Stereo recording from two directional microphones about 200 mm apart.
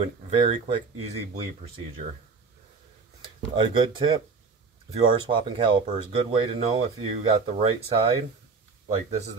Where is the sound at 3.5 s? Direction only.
20° right (ahead or behind).